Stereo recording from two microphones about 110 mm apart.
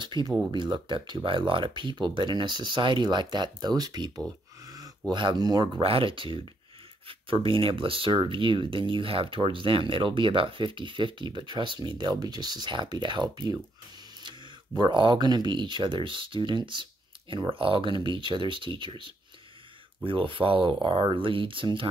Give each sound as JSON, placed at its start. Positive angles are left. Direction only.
{"t": 0.0, "sound": "speech", "side_deg": -45}
{"t": 4.6, "sound": "a sound", "side_deg": -35}
{"t": 5.1, "sound": "speech", "side_deg": -45}
{"t": 5.8, "sound": "speech", "side_deg": -55}
{"t": 14.8, "sound": "speech", "side_deg": -45}